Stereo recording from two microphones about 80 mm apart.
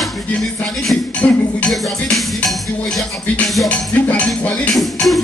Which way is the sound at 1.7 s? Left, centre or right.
Centre.